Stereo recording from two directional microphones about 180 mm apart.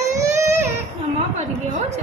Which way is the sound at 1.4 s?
40° right (ahead or behind).